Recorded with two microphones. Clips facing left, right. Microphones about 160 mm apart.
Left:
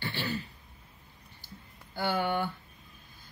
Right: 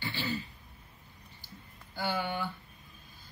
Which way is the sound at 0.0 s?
55° left (ahead or behind).